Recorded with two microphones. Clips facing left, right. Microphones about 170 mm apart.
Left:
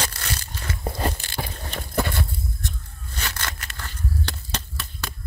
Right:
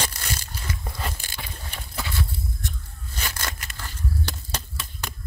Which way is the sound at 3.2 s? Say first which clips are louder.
Even; 10° right (ahead or behind).